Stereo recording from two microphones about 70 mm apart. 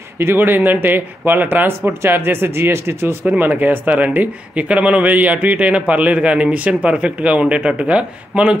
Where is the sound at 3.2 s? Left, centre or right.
Right.